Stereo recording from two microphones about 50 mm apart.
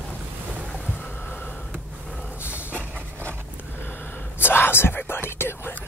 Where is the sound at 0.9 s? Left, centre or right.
Left.